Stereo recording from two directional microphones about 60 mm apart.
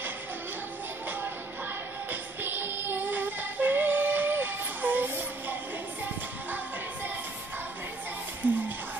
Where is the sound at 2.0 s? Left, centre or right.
Right.